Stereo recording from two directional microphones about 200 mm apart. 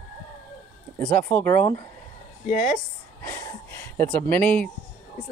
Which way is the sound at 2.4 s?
40° left (ahead or behind).